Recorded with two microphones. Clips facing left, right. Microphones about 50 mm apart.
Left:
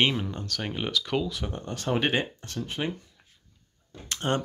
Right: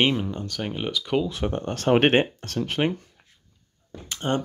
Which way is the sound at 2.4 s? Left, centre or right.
Right.